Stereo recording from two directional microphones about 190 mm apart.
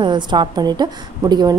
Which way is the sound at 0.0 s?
25° right (ahead or behind).